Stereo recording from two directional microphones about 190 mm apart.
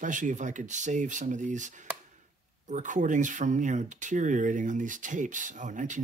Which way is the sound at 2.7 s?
40° right (ahead or behind).